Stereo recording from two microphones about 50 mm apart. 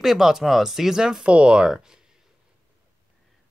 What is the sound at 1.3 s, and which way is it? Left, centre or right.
Speech, right.